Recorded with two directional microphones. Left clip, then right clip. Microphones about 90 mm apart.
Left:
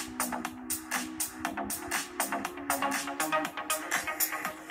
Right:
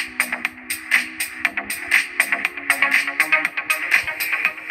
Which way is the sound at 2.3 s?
35° right (ahead or behind).